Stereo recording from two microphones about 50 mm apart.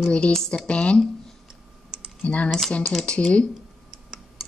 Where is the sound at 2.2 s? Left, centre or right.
Left.